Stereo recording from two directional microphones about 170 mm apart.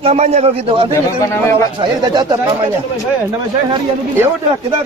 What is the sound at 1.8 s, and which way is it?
Speech, 25° right (ahead or behind).